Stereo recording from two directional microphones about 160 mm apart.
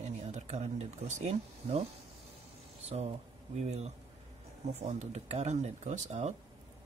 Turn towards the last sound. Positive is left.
turn(degrees=-45)  # may be behind; listen again after turning